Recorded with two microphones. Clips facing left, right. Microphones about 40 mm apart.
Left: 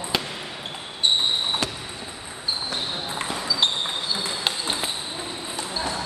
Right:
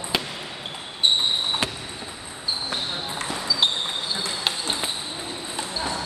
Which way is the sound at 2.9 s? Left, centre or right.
Centre.